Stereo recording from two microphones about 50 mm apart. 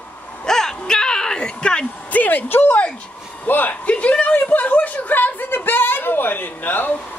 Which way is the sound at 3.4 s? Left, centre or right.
Left.